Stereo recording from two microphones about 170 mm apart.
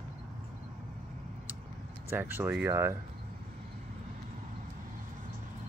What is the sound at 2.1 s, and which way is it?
Speech, 10° right (ahead or behind).